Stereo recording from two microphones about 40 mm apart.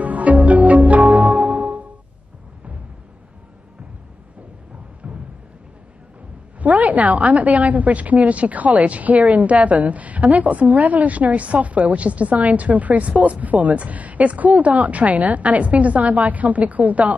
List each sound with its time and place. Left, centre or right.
0.0 s music: right
5.0 s a sound: right
6.6 s a woman's voice: right